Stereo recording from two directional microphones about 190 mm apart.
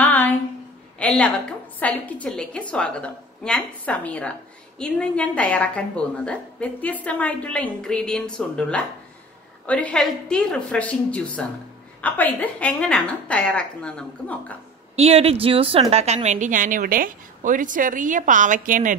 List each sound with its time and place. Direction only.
0.0 s a sound: 10° left (ahead or behind)
1.8 s a woman's voice: 5° left (ahead or behind)
15.0 s a woman's voice: 30° right (ahead or behind)